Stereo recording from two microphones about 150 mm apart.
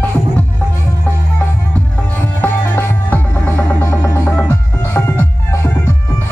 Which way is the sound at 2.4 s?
15° left (ahead or behind).